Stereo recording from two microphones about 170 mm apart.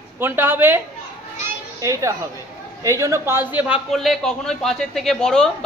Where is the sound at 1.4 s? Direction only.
20° right (ahead or behind).